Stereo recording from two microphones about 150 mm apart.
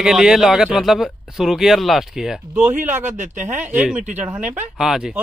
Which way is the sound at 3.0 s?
55° right (ahead or behind).